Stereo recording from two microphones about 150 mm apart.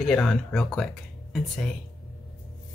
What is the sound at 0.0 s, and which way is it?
Speech, 5° left (ahead or behind).